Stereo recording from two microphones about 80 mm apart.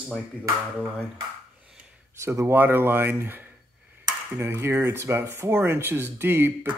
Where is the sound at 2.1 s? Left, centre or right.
Right.